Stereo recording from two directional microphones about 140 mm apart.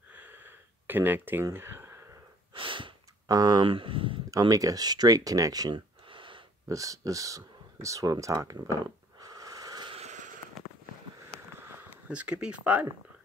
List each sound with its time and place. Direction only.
0.1 s a sound: 10° right (ahead or behind)
2.5 s sniff: 35° right (ahead or behind)
4.3 s speech: 25° right (ahead or behind)
6.7 s speech: 25° right (ahead or behind)
9.2 s wheeze: 25° right (ahead or behind)
9.9 s a sound: 55° right (ahead or behind)
12.1 s speech: 10° right (ahead or behind)